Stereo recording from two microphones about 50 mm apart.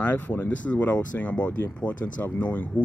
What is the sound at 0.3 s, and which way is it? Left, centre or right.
Speech, left.